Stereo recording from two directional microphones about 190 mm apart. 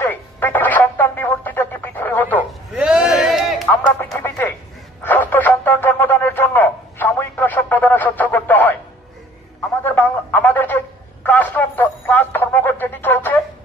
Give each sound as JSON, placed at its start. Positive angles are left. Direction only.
{"t": 0.0, "sound": "radio", "side_deg": 10}
{"t": 2.8, "sound": "a sound", "side_deg": -5}
{"t": 4.2, "sound": "radio", "side_deg": 10}
{"t": 5.0, "sound": "a sound", "side_deg": 10}
{"t": 9.8, "sound": "telephone", "side_deg": 10}
{"t": 11.2, "sound": "radio", "side_deg": 10}